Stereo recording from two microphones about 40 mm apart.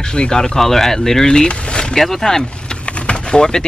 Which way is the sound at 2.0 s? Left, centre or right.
Centre.